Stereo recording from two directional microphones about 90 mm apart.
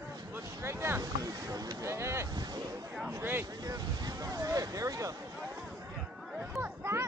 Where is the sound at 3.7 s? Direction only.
45° right (ahead or behind).